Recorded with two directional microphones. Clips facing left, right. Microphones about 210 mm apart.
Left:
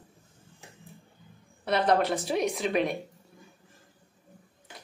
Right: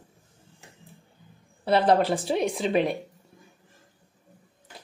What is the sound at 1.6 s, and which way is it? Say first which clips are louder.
A woman's voice: right 4 dB; 30° right (ahead or behind).